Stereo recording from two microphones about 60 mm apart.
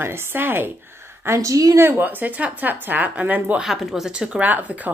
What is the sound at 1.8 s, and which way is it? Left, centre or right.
Speech, right.